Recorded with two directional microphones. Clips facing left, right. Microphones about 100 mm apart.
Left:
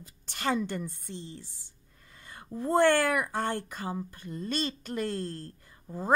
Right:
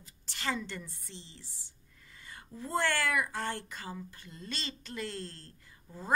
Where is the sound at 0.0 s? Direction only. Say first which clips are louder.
Left 5 dB; 50° left (ahead or behind).